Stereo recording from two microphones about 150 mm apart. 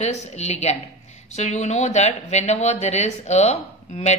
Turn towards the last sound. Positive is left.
turn(degrees=45)  # may be behind; listen again after turning